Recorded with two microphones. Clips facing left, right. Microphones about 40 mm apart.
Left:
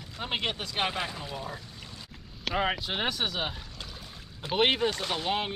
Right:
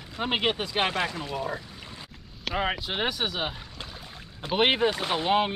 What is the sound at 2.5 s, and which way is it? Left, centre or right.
Speech, centre.